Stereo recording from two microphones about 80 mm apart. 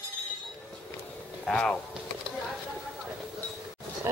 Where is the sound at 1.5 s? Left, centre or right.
Centre.